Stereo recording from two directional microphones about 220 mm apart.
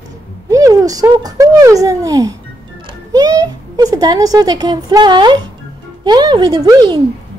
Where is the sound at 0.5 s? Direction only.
15° right (ahead or behind).